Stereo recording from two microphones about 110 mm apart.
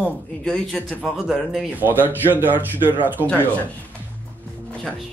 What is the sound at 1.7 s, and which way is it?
Speech, 15° right (ahead or behind).